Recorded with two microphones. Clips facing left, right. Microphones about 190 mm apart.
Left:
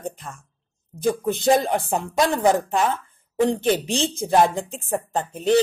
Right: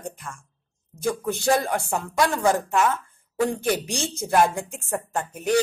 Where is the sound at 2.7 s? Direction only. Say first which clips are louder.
Even; 30° left (ahead or behind).